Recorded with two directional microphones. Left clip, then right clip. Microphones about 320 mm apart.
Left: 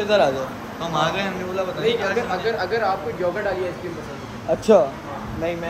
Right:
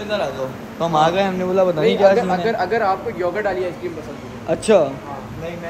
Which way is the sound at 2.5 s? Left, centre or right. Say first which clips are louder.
Right 3 dB; right.